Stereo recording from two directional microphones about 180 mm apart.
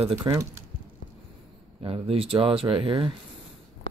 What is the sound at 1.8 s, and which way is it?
Speech, 30° right (ahead or behind).